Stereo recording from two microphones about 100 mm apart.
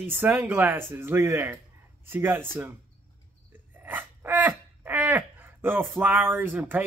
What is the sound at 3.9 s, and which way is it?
Speech, 20° right (ahead or behind).